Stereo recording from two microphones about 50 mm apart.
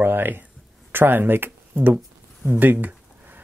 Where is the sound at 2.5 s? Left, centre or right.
Right.